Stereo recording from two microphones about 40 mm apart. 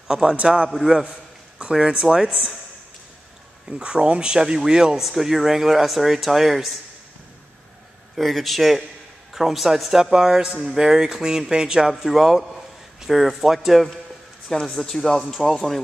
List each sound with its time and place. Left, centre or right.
0.1 s speech: centre
1.7 s speech: centre
2.0 s speech: centre
3.6 s speech: right
4.9 s speech: centre
8.2 s speech: centre
11.9 s speech: centre
14.5 s a man's voice: centre